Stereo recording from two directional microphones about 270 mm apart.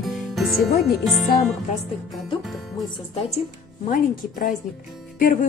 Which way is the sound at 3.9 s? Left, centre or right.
Left.